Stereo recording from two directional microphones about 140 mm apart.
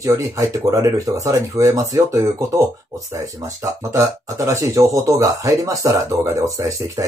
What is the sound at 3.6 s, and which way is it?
Speech, 25° right (ahead or behind).